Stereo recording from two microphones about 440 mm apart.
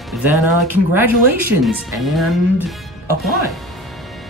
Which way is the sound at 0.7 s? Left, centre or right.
Right.